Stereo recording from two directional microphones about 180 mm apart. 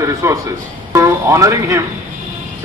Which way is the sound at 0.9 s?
15° right (ahead or behind).